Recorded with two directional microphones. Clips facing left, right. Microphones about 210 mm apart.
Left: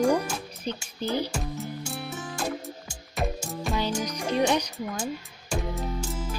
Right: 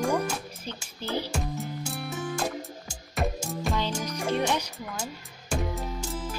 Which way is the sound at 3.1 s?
Centre (ahead or behind).